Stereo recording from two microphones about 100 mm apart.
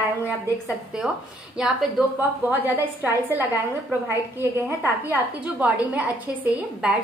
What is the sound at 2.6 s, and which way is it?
A woman's voice, 20° right (ahead or behind).